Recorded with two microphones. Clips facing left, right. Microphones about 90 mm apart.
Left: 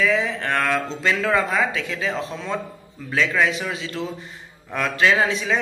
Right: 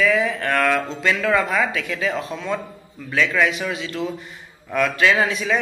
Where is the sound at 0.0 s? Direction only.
20° left (ahead or behind).